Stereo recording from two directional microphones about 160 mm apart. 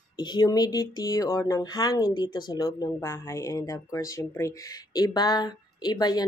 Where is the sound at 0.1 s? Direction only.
25° left (ahead or behind).